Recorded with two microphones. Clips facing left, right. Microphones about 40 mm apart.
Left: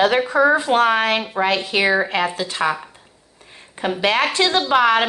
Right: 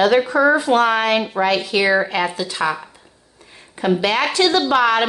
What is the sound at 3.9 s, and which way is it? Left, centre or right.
A woman's voice, left.